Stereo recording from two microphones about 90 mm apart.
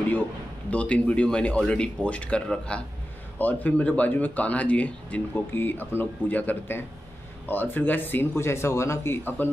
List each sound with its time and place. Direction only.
0.7 s speech: 15° left (ahead or behind)